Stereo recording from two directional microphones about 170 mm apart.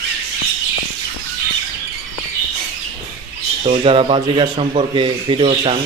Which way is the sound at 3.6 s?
35° right (ahead or behind).